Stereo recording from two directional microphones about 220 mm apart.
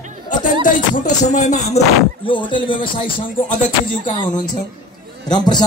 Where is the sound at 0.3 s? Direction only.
35° left (ahead or behind).